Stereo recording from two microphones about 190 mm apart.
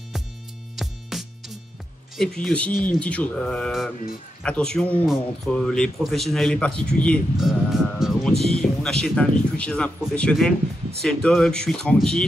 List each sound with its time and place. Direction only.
0.7 s music: centre (ahead or behind)
2.1 s a man's voice: 5° left (ahead or behind)
2.7 s speech: 45° left (ahead or behind)
3.0 s a man's voice: 5° left (ahead or behind)